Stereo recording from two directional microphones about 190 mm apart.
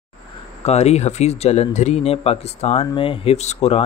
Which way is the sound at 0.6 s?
35° left (ahead or behind).